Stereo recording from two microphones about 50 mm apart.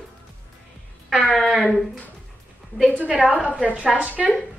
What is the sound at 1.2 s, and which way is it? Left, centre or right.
Speech, centre.